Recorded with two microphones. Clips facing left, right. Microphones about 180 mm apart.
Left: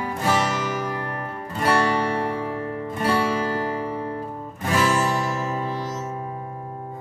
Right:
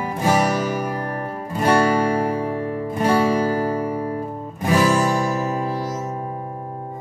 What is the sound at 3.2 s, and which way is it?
Music, 35° right (ahead or behind).